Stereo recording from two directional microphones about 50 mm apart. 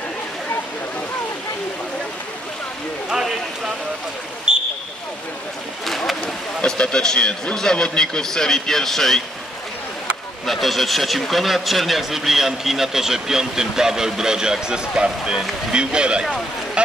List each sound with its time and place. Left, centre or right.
3.1 s a sound: centre
4.5 s vehicle: centre
5.9 s a sound: centre
6.6 s speech: centre
10.4 s a man's voice: centre
16.8 s goose: right